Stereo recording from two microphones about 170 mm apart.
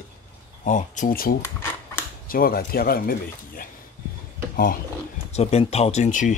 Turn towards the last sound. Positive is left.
turn(degrees=50)  # may be behind; listen again after turning